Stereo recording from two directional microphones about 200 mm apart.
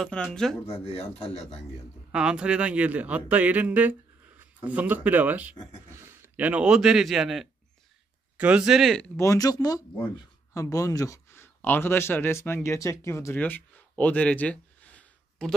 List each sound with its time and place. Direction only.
0.0 s speech: 5° left (ahead or behind)
0.7 s speech: 30° left (ahead or behind)
2.1 s a man's voice: 5° right (ahead or behind)
9.1 s speech: 15° left (ahead or behind)